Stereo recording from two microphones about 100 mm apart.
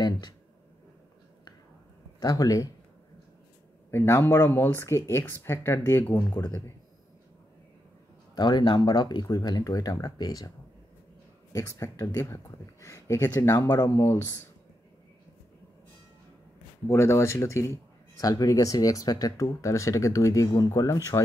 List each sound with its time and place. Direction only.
2.1 s speech: 40° left (ahead or behind)
3.9 s speech: 25° left (ahead or behind)
8.4 s speech: 50° left (ahead or behind)
11.5 s speech: 30° left (ahead or behind)
13.8 s speech: 25° left (ahead or behind)
16.8 s speech: 25° left (ahead or behind)